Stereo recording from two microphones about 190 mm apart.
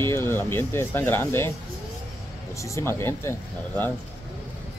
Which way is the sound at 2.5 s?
15° left (ahead or behind).